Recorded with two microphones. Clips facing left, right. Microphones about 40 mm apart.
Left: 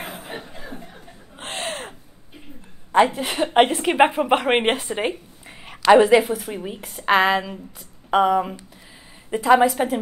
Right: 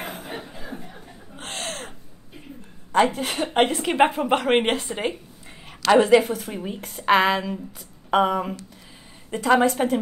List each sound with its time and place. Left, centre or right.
0.0 s a sound: centre
0.7 s chuckle: centre
1.4 s gasp: left
2.9 s a woman's voice: left; by 9.9 s centre